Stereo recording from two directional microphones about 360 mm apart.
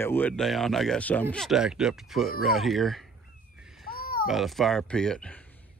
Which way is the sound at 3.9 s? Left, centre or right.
Left.